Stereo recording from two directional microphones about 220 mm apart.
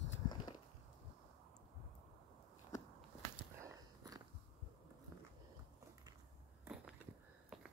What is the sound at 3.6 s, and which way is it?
Walk, 15° right (ahead or behind).